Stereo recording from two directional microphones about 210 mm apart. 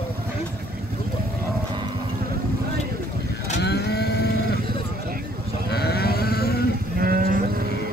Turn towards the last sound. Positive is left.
turn(degrees=-45)  # may be behind; listen again after turning